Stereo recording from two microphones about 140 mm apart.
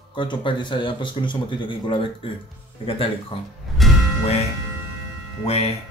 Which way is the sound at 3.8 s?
Centre (ahead or behind).